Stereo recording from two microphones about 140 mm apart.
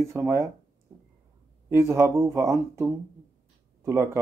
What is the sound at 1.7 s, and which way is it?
Speech, 20° right (ahead or behind).